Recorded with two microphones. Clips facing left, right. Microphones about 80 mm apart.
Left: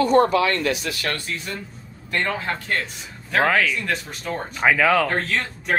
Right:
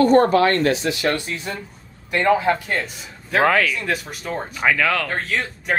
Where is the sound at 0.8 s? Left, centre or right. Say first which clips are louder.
Right 6 dB; right.